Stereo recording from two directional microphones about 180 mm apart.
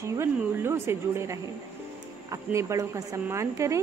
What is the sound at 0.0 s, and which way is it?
A woman's voice, 15° right (ahead or behind).